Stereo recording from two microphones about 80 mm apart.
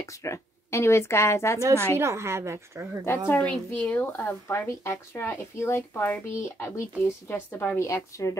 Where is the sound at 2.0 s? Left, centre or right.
Right.